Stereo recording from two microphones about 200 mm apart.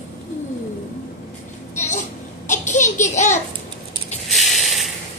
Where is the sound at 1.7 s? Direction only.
35° left (ahead or behind).